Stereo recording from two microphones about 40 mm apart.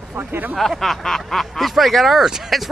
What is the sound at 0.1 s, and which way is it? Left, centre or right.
Speech, right.